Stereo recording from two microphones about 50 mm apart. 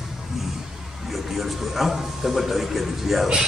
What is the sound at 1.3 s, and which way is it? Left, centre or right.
Speech, centre.